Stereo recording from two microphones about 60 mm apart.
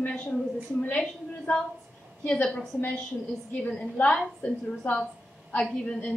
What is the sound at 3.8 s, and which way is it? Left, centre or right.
A woman's voice, left.